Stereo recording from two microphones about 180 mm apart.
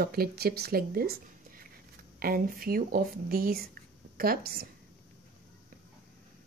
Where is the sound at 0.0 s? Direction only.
60° right (ahead or behind).